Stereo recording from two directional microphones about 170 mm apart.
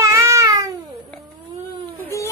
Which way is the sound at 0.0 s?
15° right (ahead or behind).